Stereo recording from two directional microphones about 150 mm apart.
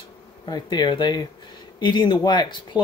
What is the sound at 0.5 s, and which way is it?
Speech, 30° left (ahead or behind).